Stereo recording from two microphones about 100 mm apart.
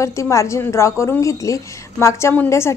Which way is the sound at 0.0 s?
30° left (ahead or behind).